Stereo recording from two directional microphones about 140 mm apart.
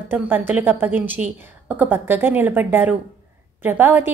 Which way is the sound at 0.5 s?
15° right (ahead or behind).